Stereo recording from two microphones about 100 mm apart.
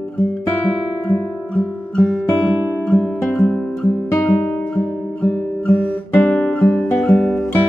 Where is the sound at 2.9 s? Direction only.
5° left (ahead or behind).